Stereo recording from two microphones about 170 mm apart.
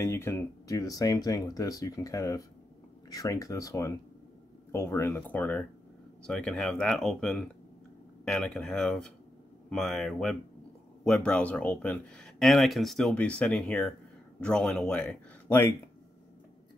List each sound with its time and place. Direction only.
0.0 s speech: 15° left (ahead or behind)